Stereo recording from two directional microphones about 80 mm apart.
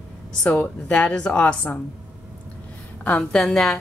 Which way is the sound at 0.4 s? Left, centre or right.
Centre.